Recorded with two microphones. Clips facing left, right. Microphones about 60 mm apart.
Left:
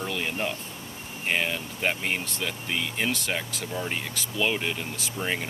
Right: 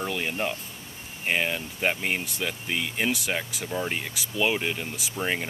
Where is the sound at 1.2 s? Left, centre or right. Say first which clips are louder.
Right 1 dB; centre.